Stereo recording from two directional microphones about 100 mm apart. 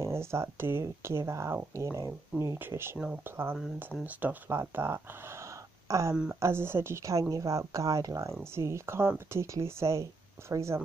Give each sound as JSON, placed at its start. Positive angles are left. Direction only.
{"t": 0.0, "sound": "speech", "side_deg": -25}